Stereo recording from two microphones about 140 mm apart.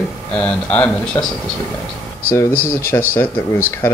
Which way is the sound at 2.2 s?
15° left (ahead or behind).